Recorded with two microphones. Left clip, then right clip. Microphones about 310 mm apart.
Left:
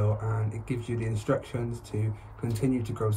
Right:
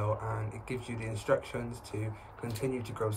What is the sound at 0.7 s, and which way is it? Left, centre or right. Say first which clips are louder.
Speech: left 6 dB; right.